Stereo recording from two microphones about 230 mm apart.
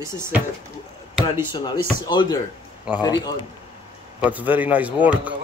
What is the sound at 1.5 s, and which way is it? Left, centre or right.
Speech, centre.